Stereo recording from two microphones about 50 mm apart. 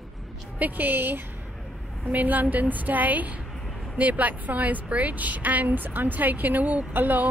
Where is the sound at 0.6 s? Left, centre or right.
Right.